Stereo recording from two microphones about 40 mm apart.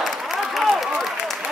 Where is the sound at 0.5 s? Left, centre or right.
Centre.